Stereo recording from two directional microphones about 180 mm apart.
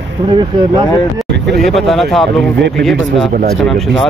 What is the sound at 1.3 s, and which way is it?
Vehicle, 75° right (ahead or behind).